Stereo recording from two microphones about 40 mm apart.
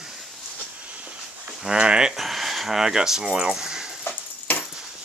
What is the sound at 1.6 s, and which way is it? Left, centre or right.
Speech, right.